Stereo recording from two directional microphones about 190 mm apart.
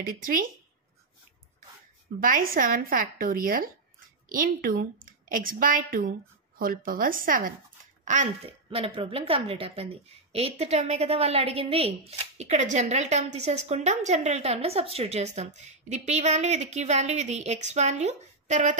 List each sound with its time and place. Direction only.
0.0 s a woman's voice: 45° right (ahead or behind)
2.1 s a woman's voice: 45° right (ahead or behind)